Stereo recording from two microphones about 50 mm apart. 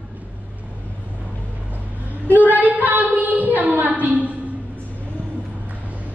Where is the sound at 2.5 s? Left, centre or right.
Right.